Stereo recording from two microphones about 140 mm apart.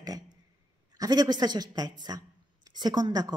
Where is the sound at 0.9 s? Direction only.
25° right (ahead or behind).